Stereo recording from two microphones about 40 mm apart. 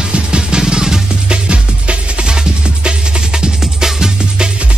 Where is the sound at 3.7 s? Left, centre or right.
Centre.